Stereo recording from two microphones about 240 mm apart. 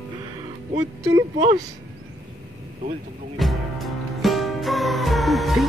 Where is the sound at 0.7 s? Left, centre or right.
Centre.